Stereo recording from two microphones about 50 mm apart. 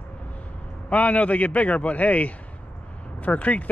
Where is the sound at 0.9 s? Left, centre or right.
Left.